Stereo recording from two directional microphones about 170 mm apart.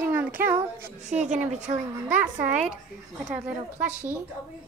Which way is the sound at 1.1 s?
45° right (ahead or behind).